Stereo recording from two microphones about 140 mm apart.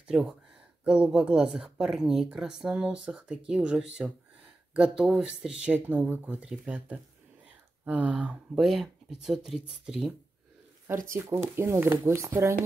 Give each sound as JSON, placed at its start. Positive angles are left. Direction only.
{"t": 0.0, "sound": "speech", "side_deg": -5}
{"t": 10.9, "sound": "speech", "side_deg": -15}